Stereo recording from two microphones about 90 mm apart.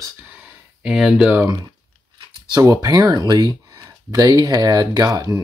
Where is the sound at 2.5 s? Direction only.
40° right (ahead or behind).